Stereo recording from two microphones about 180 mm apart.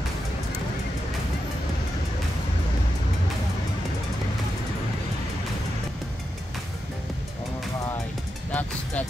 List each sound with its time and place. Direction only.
8.5 s vehicle: 10° left (ahead or behind)